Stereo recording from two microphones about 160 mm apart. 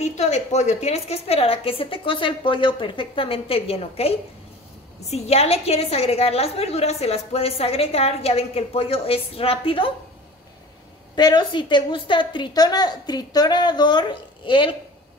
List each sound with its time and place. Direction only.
0.0 s a woman's voice: 45° left (ahead or behind)
11.1 s a woman's voice: 25° left (ahead or behind)